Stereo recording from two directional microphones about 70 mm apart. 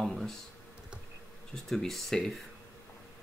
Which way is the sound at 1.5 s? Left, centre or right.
Centre.